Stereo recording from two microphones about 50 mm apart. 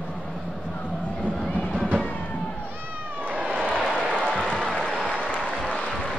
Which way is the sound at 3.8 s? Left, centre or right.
Centre.